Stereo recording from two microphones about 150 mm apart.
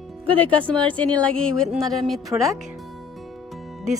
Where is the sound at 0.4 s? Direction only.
10° left (ahead or behind).